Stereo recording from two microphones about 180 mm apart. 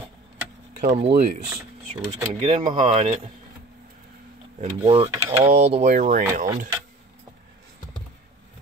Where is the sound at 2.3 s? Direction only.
35° right (ahead or behind).